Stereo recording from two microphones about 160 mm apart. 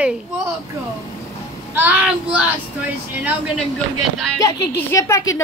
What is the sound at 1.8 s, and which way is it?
Speech, 10° right (ahead or behind).